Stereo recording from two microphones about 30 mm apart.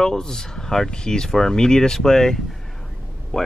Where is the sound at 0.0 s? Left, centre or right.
Centre.